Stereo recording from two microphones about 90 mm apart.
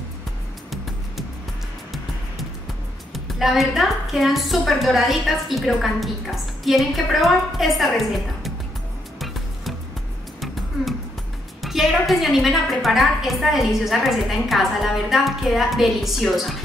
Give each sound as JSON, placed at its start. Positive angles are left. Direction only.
{"t": 3.3, "sound": "a woman's voice", "side_deg": 0}
{"t": 10.4, "sound": "music", "side_deg": 0}
{"t": 11.6, "sound": "a woman's voice", "side_deg": 0}